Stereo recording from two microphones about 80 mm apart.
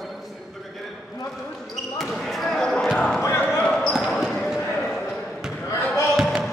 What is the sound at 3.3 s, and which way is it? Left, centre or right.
Basketball bounce, left.